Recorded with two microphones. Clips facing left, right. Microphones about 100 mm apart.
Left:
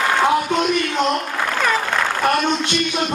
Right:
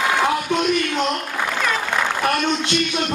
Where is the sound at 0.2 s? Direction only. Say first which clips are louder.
Left 3 dB; 15° left (ahead or behind).